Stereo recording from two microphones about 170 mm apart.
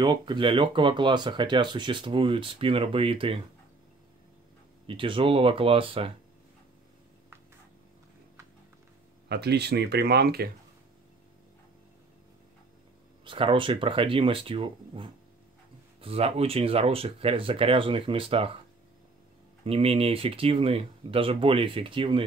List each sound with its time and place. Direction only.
0.0 s speech: 25° right (ahead or behind)
4.8 s speech: 30° right (ahead or behind)
9.3 s speech: 75° right (ahead or behind)
13.2 s speech: 30° right (ahead or behind)
19.6 s speech: 35° right (ahead or behind)